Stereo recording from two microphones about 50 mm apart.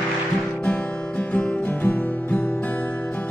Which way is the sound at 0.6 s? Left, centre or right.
Left.